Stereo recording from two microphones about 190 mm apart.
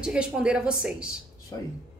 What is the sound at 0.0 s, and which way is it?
A woman's voice, 5° right (ahead or behind).